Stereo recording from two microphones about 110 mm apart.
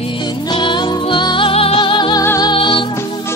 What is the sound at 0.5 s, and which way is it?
Music, 45° left (ahead or behind).